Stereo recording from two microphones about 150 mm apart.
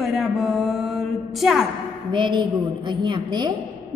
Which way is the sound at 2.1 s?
30° right (ahead or behind).